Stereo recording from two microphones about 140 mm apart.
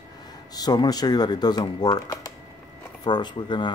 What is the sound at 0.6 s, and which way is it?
Speech, 30° left (ahead or behind).